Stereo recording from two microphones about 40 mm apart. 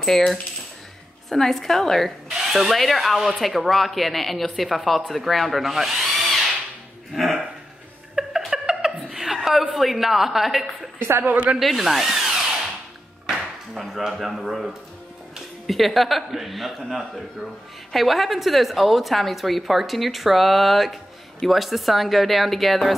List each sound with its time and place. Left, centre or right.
0.0 s coin: centre
1.3 s a woman's voice: centre
5.7 s drill: centre
8.5 s chuckle: centre
9.2 s a sound: centre
9.8 s a woman's voice: centre
11.2 s speech: right
11.6 s speech: centre
13.3 s a sound: centre
14.2 s a woman's voice: centre